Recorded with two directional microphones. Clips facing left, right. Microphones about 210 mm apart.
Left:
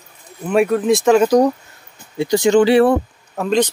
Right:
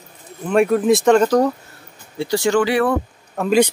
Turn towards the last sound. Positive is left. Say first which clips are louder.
# right 1 dB
turn(degrees=0)  # may be behind; listen again after turning